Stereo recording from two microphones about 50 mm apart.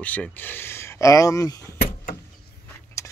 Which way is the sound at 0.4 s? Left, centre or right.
Left.